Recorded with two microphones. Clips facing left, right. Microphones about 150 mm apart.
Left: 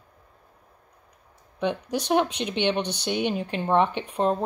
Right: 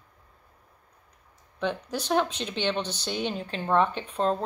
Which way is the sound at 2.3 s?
60° left (ahead or behind).